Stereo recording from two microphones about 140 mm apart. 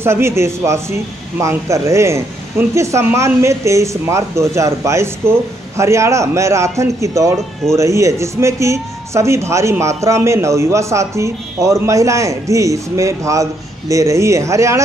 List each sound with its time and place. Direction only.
0.0 s speech: 20° right (ahead or behind)